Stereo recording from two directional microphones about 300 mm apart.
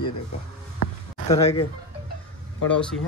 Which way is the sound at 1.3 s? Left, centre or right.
Centre.